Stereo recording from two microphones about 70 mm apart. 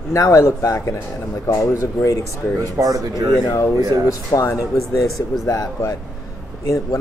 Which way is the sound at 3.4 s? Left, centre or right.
Left.